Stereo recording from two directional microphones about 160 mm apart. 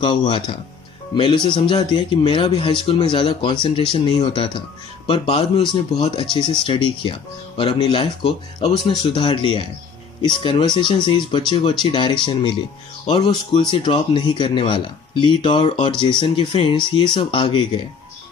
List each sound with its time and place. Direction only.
0.0 s speech: 30° left (ahead or behind)